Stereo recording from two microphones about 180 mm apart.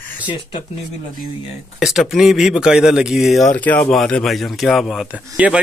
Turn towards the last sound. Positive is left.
turn(degrees=-5)  # may be behind; listen again after turning